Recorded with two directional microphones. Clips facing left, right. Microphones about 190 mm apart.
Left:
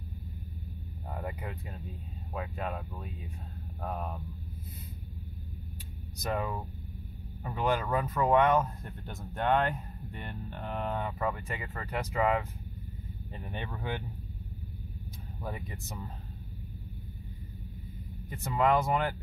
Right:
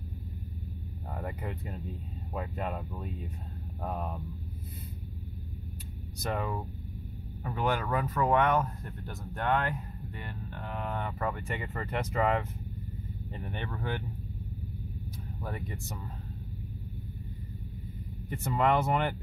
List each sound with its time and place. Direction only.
1.1 s speech: centre (ahead or behind)
6.3 s speech: centre (ahead or behind)
9.0 s speech: 20° left (ahead or behind)
11.1 s speech: centre (ahead or behind)
13.4 s speech: 10° left (ahead or behind)
18.3 s speech: centre (ahead or behind)